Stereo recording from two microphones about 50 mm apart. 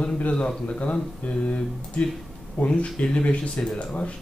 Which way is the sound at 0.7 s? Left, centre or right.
Left.